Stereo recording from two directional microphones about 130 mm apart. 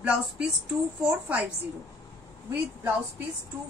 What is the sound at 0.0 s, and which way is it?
Speech, 10° right (ahead or behind).